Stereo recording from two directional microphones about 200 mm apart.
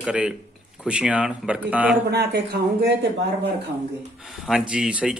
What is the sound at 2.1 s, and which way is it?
Speech, 55° right (ahead or behind).